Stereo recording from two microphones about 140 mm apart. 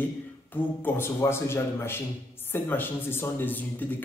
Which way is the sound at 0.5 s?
15° left (ahead or behind).